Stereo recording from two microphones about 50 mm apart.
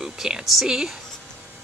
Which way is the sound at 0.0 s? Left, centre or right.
Centre.